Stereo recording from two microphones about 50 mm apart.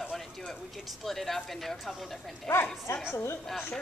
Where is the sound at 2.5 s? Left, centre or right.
Left.